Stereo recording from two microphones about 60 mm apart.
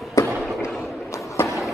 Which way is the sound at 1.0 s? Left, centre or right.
Left.